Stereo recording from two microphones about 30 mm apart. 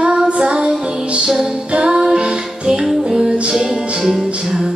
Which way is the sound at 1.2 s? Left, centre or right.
Right.